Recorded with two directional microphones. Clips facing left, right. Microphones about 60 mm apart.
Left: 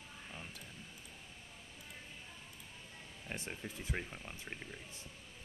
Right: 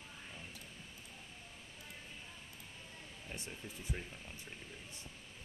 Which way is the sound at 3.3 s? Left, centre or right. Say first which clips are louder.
Left 4 dB; left.